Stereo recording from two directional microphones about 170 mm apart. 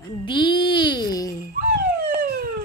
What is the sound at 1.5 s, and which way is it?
Police car, 60° right (ahead or behind).